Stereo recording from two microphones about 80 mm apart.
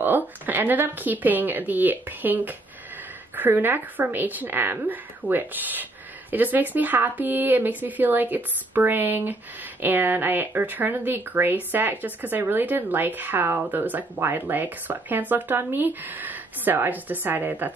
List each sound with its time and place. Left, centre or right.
0.0 s speech: right